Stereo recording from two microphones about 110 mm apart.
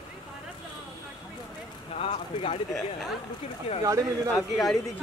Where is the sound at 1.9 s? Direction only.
70° left (ahead or behind).